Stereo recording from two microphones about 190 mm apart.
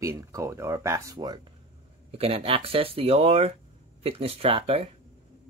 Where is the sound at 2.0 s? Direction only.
30° right (ahead or behind).